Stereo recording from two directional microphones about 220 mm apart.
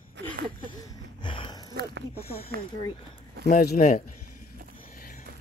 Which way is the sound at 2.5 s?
45° right (ahead or behind).